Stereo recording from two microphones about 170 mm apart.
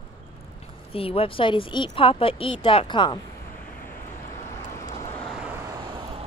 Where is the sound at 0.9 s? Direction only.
35° left (ahead or behind).